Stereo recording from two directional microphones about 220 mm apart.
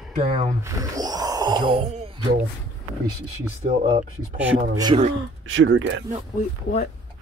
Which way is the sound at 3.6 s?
30° right (ahead or behind).